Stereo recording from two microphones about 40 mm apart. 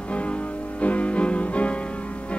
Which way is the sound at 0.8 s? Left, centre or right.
Left.